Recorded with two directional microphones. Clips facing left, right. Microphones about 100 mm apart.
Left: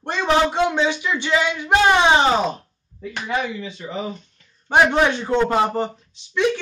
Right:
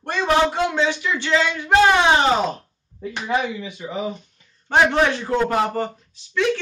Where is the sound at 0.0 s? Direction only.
20° left (ahead or behind).